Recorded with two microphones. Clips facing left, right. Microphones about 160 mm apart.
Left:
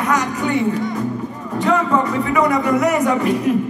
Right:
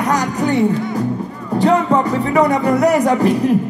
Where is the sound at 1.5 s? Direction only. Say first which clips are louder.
Right 3 dB; 35° right (ahead or behind).